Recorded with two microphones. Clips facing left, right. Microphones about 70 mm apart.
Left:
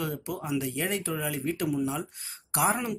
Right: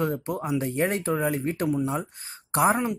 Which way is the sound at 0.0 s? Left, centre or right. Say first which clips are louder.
Right 6 dB; right.